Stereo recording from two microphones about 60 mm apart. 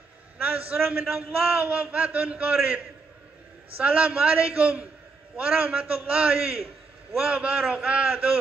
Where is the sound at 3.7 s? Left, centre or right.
Right.